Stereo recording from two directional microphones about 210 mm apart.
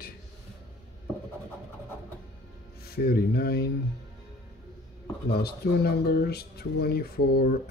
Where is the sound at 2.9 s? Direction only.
45° left (ahead or behind).